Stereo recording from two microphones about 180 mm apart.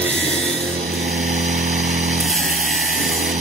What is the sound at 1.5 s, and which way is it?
Vehicle, 40° right (ahead or behind).